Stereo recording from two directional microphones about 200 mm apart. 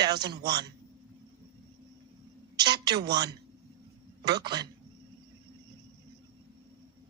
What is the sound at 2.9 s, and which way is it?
Speech, 20° right (ahead or behind).